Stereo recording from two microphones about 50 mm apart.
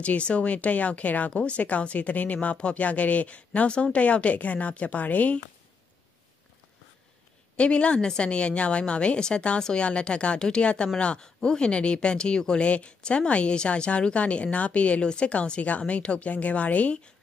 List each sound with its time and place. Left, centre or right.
0.0 s speech: left
7.5 s speech: left